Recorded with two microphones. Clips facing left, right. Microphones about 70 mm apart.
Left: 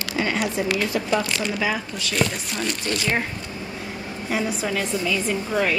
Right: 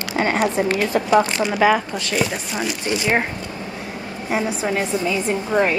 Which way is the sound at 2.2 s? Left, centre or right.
Centre.